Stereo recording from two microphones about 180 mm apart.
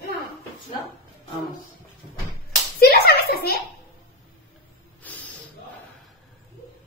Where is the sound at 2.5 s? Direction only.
60° left (ahead or behind).